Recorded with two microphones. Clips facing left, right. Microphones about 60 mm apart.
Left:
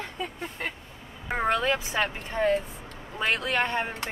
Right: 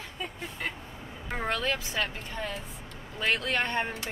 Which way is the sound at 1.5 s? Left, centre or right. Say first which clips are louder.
Left 4 dB; centre.